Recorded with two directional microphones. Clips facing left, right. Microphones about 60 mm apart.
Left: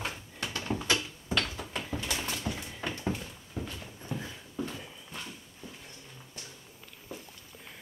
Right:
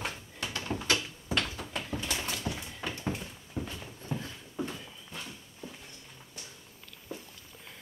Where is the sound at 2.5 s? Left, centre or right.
Centre.